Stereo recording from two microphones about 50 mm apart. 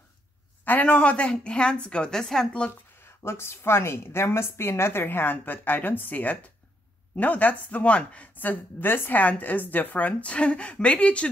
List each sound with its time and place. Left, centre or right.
0.7 s a woman's voice: left; by 2.4 s centre
3.2 s a woman's voice: left
8.4 s speech: left
9.2 s a woman's voice: left